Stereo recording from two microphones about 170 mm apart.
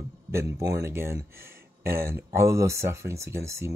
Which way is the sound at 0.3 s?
15° right (ahead or behind).